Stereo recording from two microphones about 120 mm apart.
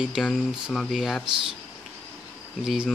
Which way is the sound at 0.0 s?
5° right (ahead or behind).